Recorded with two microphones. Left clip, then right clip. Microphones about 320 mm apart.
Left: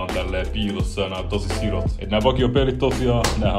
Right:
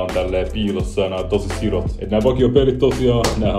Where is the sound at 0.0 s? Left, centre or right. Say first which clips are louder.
Right 6 dB; centre.